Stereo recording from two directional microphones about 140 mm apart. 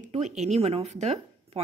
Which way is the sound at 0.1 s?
55° right (ahead or behind).